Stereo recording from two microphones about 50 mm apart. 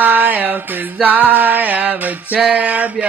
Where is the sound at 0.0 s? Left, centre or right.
Right.